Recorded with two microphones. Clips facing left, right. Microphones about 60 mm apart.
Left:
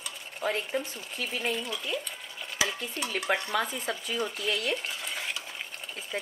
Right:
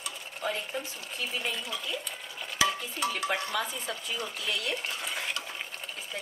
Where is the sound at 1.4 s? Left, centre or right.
Centre.